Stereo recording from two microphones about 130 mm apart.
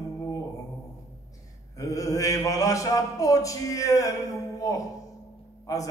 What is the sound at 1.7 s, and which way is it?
Mantra, 25° left (ahead or behind).